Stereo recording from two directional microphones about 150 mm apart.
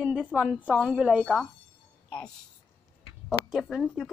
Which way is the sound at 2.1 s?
10° left (ahead or behind).